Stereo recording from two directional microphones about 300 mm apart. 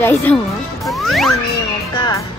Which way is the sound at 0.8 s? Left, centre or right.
Centre.